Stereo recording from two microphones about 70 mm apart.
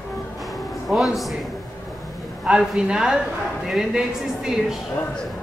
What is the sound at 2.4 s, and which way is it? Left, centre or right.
Speech, centre.